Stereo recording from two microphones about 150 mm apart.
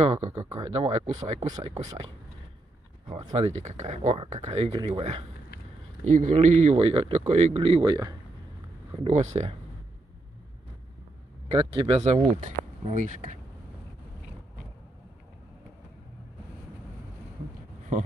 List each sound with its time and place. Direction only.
0.1 s speech: 45° right (ahead or behind)
3.1 s speech: 30° right (ahead or behind)
3.3 s speech: 50° right (ahead or behind)
6.0 s speech: 55° right (ahead or behind); by 8.2 s 25° right (ahead or behind)
9.0 s speech: 50° right (ahead or behind)
11.5 s speech: 35° right (ahead or behind)
12.0 s speech: 45° right (ahead or behind)